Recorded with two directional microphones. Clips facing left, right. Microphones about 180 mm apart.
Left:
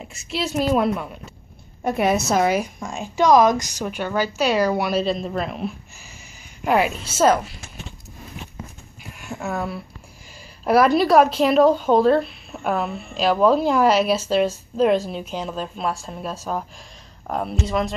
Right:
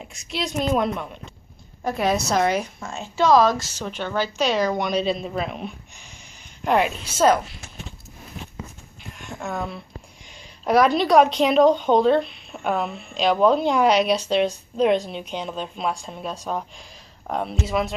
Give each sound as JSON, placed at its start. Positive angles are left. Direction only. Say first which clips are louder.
{"t": 0.0, "sound": "speech", "louder": "left 2 dB", "side_deg": 0}
{"t": 1.8, "sound": "a woman's voice", "louder": "left 3 dB", "side_deg": 20}
{"t": 2.0, "sound": "a woman's voice", "louder": "left 1 dB", "side_deg": 5}
{"t": 9.0, "sound": "a sound", "louder": "left 3 dB", "side_deg": 10}
{"t": 10.6, "sound": "speech", "louder": "left 2 dB", "side_deg": 5}